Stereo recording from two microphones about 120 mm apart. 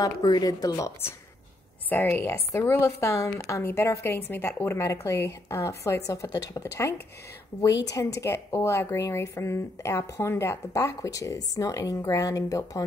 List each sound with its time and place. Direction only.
0.0 s a woman's voice: 35° left (ahead or behind)
1.9 s a woman's voice: 15° left (ahead or behind)